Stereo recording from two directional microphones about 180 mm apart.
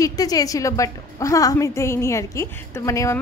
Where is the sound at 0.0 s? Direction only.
20° left (ahead or behind).